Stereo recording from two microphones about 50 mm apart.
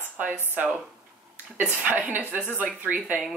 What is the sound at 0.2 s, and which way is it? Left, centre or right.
Speech, right.